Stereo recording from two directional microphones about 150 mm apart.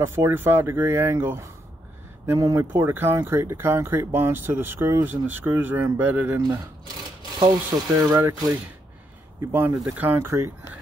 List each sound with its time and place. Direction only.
0.0 s speech: 15° right (ahead or behind)
8.0 s speech: 20° right (ahead or behind)